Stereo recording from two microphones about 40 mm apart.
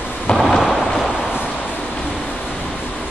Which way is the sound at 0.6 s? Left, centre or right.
Centre.